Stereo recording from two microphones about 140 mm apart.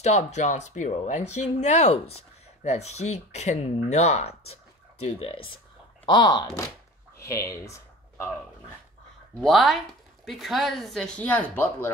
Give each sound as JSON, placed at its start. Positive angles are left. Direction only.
{"t": 0.0, "sound": "speech", "side_deg": 55}
{"t": 6.0, "sound": "speech", "side_deg": 30}
{"t": 7.2, "sound": "speech", "side_deg": 20}
{"t": 9.4, "sound": "speech", "side_deg": 0}